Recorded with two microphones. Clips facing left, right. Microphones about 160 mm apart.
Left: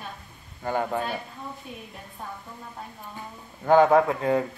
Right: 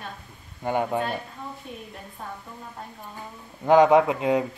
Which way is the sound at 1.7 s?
5° left (ahead or behind).